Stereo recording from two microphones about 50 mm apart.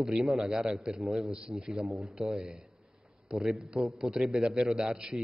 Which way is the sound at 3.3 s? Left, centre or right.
Centre.